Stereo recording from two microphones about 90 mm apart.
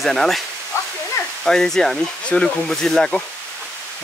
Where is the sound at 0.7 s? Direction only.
30° left (ahead or behind).